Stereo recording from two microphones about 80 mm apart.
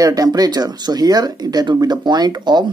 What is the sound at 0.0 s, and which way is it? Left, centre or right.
A woman's voice, right.